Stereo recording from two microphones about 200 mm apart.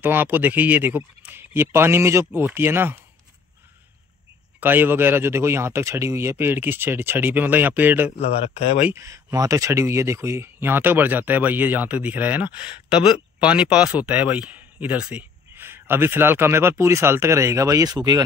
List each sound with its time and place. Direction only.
0.0 s speech: 10° right (ahead or behind)
4.6 s speech: 10° right (ahead or behind)
8.2 s speech: 30° left (ahead or behind)
8.7 s speech: 10° right (ahead or behind)